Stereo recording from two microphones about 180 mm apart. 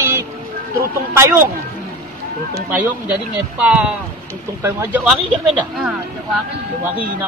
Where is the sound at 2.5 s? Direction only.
10° right (ahead or behind).